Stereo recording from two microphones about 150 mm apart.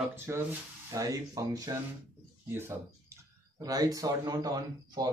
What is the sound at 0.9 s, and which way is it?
Speech, 20° right (ahead or behind).